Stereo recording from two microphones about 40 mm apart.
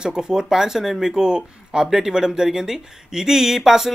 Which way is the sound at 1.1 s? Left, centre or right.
Centre.